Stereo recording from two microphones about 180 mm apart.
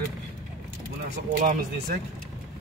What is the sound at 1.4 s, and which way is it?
Speech, 50° right (ahead or behind).